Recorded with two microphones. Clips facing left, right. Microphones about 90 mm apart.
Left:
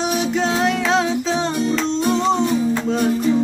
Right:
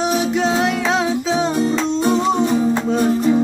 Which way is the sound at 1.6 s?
30° right (ahead or behind).